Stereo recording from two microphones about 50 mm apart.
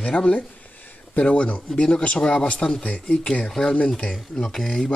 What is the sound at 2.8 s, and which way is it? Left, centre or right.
Speech, left.